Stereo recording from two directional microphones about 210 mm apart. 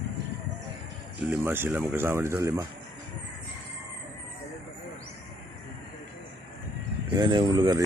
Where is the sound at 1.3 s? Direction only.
10° right (ahead or behind).